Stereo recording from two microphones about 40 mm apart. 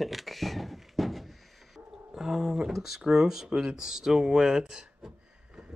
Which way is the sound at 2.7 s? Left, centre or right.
Centre.